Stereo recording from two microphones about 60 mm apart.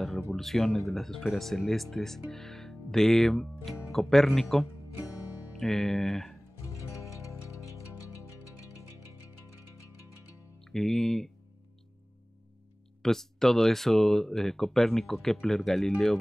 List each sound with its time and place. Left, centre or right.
0.4 s speech: centre
10.6 s speech: centre
13.0 s speech: centre